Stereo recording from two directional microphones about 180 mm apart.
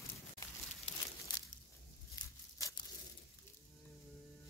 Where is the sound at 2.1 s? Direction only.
25° left (ahead or behind).